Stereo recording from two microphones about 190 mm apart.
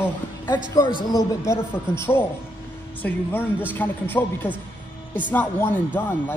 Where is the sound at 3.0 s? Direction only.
10° left (ahead or behind).